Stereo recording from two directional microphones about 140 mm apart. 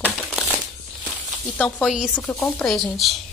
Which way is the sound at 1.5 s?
10° left (ahead or behind).